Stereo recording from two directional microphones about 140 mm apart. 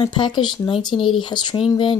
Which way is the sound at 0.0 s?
35° left (ahead or behind).